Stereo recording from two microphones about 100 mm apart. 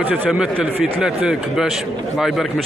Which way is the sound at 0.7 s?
20° right (ahead or behind).